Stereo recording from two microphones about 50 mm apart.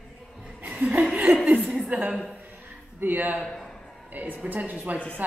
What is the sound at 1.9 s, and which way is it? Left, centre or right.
A woman's voice, right.